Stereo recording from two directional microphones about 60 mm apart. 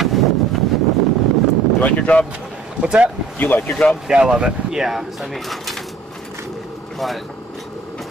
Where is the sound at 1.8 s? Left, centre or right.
Left.